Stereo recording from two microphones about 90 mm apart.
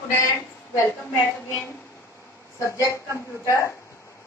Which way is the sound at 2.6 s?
35° left (ahead or behind).